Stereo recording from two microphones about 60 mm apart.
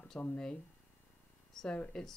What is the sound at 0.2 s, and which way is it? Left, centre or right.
Speech, left.